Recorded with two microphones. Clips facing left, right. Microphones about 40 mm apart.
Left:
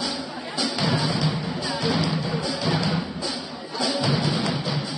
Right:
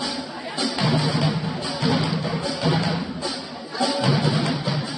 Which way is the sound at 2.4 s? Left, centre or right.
Right.